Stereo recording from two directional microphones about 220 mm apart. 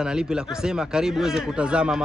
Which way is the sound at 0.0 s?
5° right (ahead or behind).